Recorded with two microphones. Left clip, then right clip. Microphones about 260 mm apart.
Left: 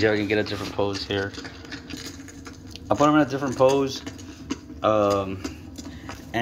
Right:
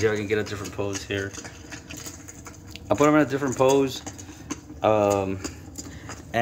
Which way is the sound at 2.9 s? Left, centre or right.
Centre.